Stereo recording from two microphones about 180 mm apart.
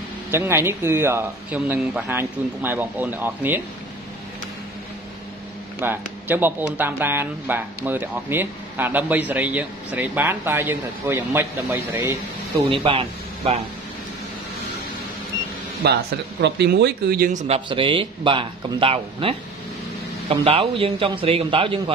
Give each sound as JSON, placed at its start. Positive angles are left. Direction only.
{"t": 0.3, "sound": "speech", "side_deg": -15}
{"t": 5.8, "sound": "speech", "side_deg": -10}
{"t": 12.6, "sound": "speech", "side_deg": -30}
{"t": 15.8, "sound": "speech", "side_deg": -70}
{"t": 17.6, "sound": "speech", "side_deg": -25}